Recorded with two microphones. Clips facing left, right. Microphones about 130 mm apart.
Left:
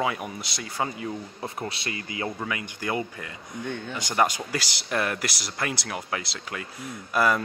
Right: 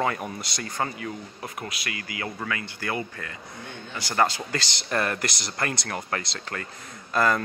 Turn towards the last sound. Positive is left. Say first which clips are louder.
# even
turn(degrees=10)  # may be behind; listen again after turning